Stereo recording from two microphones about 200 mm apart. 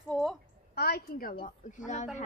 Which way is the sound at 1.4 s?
40° left (ahead or behind).